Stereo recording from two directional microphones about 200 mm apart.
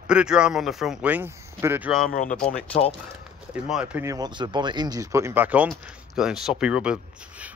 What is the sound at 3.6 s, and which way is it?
Speech, 5° right (ahead or behind).